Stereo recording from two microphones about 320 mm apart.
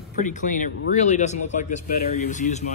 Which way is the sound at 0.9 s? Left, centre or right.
Left.